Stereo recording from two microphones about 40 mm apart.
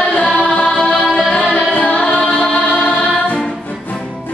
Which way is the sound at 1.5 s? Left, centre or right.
Left.